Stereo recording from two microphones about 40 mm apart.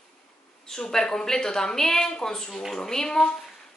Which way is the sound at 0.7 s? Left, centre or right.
Centre.